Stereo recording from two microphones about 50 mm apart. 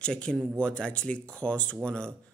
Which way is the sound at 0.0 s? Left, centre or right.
Left.